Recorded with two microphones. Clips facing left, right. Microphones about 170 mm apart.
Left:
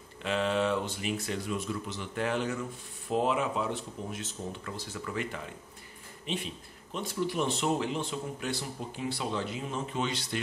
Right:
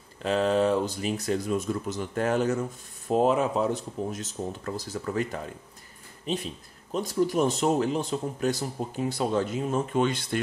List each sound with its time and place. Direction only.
0.2 s speech: 40° right (ahead or behind)